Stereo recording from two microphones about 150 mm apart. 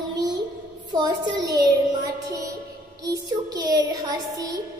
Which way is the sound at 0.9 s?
30° right (ahead or behind).